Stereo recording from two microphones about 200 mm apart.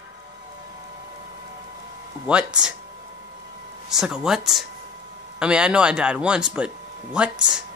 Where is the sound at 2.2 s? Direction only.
5° right (ahead or behind).